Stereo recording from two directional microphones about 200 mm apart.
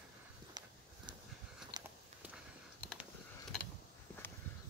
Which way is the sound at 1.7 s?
20° right (ahead or behind).